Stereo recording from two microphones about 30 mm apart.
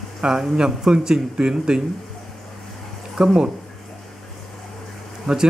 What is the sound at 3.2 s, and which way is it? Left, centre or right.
Speech, centre.